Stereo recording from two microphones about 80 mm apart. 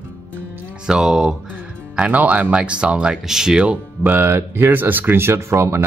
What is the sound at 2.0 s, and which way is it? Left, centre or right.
Speech, centre.